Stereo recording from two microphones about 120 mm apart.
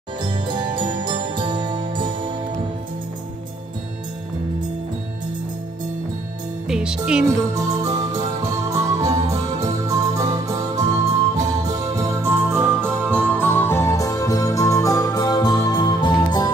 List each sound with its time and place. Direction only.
0.2 s music: 40° right (ahead or behind)
6.7 s speech: 5° right (ahead or behind)
7.2 s music: 25° right (ahead or behind)
13.4 s music: 15° left (ahead or behind); by 16.4 s 35° left (ahead or behind)